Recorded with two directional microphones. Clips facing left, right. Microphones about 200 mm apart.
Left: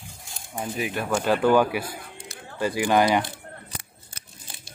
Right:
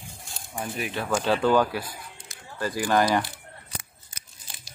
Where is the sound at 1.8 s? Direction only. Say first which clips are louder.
Left 5 dB; 55° left (ahead or behind).